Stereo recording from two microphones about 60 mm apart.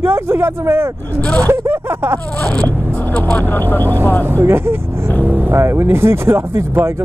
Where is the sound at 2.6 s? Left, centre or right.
Left.